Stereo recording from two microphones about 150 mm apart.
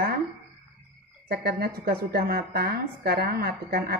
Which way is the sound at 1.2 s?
90° right.